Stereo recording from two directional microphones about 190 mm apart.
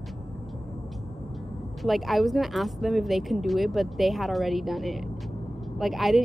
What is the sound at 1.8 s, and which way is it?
Speech, centre (ahead or behind).